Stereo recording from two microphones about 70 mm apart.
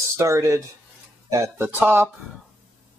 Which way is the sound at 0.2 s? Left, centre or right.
Right.